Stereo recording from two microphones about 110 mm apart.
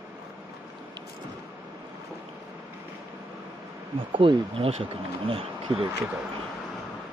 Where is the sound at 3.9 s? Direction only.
50° right (ahead or behind).